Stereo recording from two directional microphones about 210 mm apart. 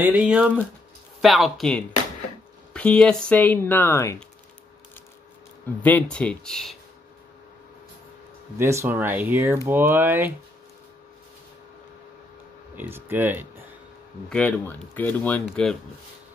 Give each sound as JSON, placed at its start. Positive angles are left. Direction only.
{"t": 0.0, "sound": "speech", "side_deg": -5}
{"t": 5.8, "sound": "speech", "side_deg": 5}
{"t": 8.5, "sound": "speech", "side_deg": -10}
{"t": 12.7, "sound": "speech", "side_deg": -10}
{"t": 14.3, "sound": "speech", "side_deg": 5}